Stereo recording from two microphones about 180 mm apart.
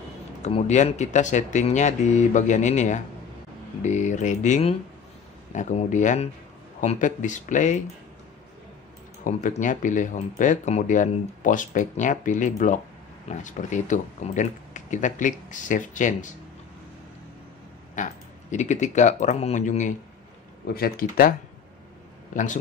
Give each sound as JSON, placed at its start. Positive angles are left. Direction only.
{"t": 0.4, "sound": "speech", "side_deg": 40}
{"t": 9.2, "sound": "speech", "side_deg": 45}
{"t": 17.9, "sound": "speech", "side_deg": 45}
{"t": 20.6, "sound": "speech", "side_deg": 55}
{"t": 22.3, "sound": "speech", "side_deg": 45}